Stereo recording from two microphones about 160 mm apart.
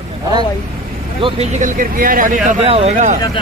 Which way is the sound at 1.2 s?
45° right (ahead or behind).